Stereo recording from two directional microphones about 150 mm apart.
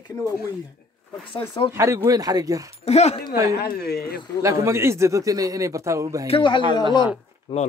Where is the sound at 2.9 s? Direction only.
45° left (ahead or behind).